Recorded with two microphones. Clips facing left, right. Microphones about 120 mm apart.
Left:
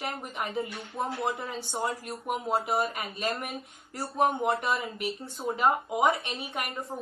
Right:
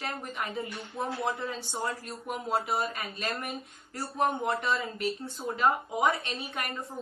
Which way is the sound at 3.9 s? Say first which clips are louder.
Left 2 dB; 20° left (ahead or behind).